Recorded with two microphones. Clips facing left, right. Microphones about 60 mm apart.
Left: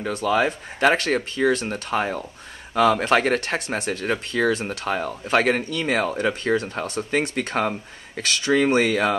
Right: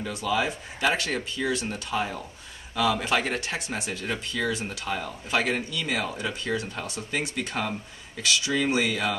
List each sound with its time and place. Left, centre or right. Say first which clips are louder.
0.0 s speech: left 6 dB; left